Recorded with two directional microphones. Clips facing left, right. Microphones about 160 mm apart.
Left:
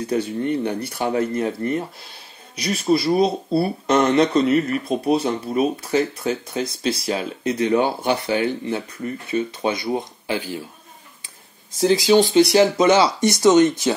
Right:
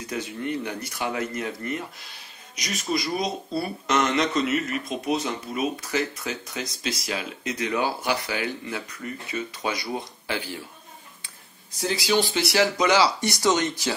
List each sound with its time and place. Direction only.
0.0 s speech: 30° left (ahead or behind); by 10.7 s 15° left (ahead or behind)
11.9 s speech: 20° left (ahead or behind)